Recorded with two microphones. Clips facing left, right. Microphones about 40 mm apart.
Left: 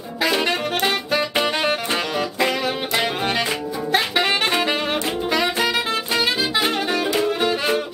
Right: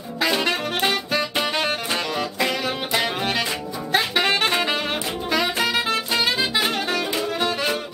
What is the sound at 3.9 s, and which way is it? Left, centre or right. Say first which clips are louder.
Saxophone: even; centre.